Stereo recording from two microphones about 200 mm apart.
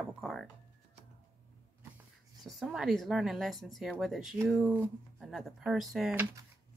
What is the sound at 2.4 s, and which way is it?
Speech, centre (ahead or behind).